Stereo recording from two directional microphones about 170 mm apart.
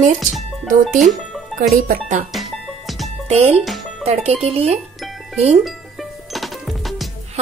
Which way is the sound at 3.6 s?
Centre (ahead or behind).